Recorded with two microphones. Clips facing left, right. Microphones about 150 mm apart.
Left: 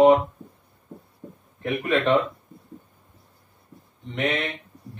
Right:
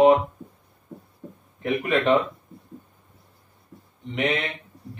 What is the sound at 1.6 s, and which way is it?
Speech, centre (ahead or behind).